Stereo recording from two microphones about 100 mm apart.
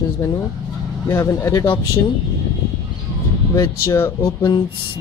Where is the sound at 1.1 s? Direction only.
25° left (ahead or behind).